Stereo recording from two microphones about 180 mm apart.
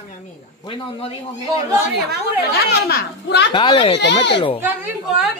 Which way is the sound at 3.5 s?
30° left (ahead or behind).